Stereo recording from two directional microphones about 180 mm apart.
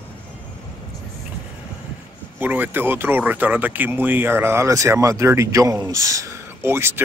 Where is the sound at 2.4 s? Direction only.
10° right (ahead or behind).